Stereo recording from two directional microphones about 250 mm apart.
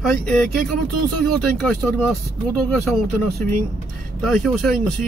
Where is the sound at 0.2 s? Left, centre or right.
Centre.